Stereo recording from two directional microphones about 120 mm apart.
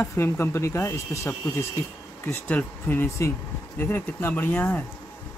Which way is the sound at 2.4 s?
15° left (ahead or behind).